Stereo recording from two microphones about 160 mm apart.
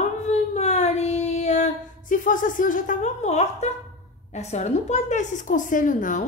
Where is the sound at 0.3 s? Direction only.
45° left (ahead or behind).